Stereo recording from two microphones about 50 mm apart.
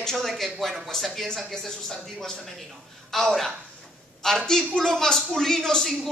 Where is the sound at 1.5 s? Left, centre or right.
Centre.